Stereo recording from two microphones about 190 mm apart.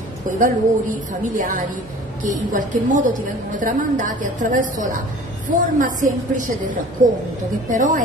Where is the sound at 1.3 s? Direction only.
45° right (ahead or behind).